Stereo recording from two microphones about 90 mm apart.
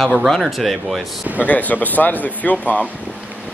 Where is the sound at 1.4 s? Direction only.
15° left (ahead or behind).